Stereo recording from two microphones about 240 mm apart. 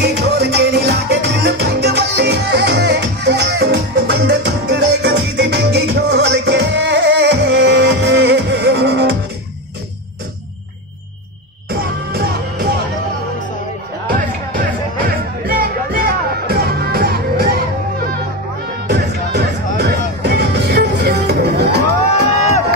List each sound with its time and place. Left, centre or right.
0.0 s music: right
12.1 s music: right
14.0 s music: right
18.9 s music: right